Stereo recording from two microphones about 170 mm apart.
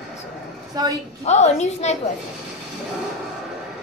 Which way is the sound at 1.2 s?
40° left (ahead or behind).